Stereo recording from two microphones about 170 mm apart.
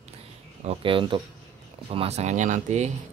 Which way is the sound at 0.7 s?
30° right (ahead or behind).